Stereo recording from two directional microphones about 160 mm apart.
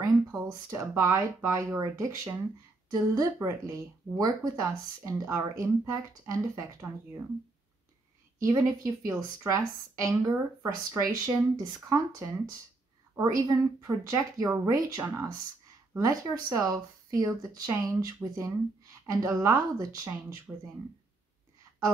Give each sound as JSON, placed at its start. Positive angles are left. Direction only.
{"t": 0.0, "sound": "speech", "side_deg": -20}
{"t": 8.4, "sound": "speech", "side_deg": -20}